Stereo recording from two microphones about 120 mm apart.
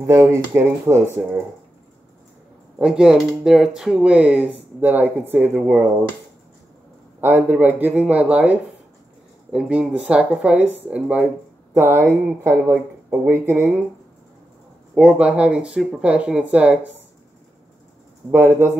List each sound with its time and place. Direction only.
0.0 s speech: 25° right (ahead or behind)
2.8 s speech: 5° right (ahead or behind)
7.2 s speech: 15° right (ahead or behind)
15.0 s speech: 10° right (ahead or behind)
18.3 s speech: 20° right (ahead or behind)